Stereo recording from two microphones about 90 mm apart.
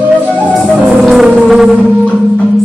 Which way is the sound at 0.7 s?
15° right (ahead or behind).